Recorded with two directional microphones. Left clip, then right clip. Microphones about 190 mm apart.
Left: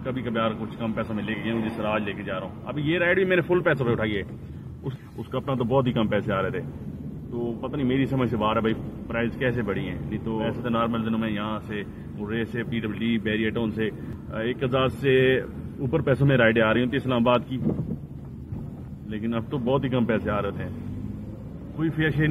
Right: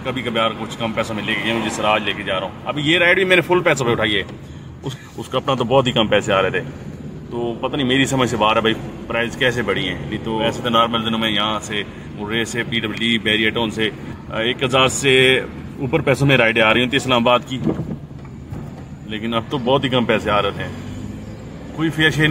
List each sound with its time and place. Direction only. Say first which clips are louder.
0.0 s a man's voice: right 7 dB; 15° right (ahead or behind)
19.0 s a man's voice: right 8 dB; 15° right (ahead or behind)
21.7 s a man's voice: right 9 dB; 15° right (ahead or behind)